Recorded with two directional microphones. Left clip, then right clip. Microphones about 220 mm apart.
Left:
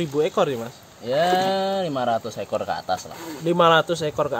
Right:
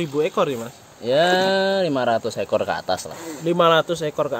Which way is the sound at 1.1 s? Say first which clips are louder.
Right 3 dB; 40° right (ahead or behind).